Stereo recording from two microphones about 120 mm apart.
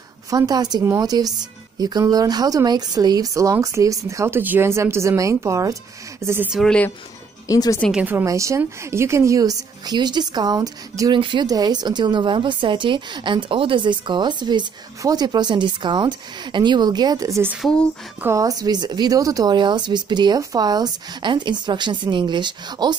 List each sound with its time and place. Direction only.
0.3 s a woman's voice: 30° right (ahead or behind)
6.5 s a woman's voice: 5° left (ahead or behind)
7.4 s speech: 30° left (ahead or behind)
7.9 s a woman's voice: 15° right (ahead or behind)
8.3 s a woman's voice: 25° right (ahead or behind)
17.6 s a woman's voice: 5° left (ahead or behind)
18.2 s a woman's voice: 25° right (ahead or behind)